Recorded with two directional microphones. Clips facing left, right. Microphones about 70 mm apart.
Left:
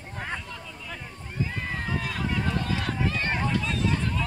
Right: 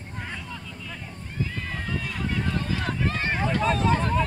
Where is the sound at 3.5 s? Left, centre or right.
Right.